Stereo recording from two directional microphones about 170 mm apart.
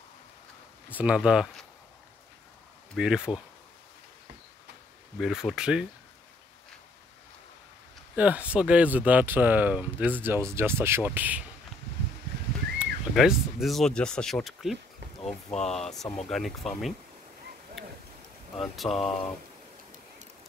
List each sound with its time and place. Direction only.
0.8 s speech: 10° right (ahead or behind)
3.0 s speech: 5° right (ahead or behind)
5.2 s speech: centre (ahead or behind)
8.2 s speech: 10° right (ahead or behind)
12.7 s speech: 5° right (ahead or behind)
15.2 s speech: 40° left (ahead or behind)
15.9 s speech: centre (ahead or behind)
17.8 s a sound: centre (ahead or behind)
18.6 s speech: centre (ahead or behind)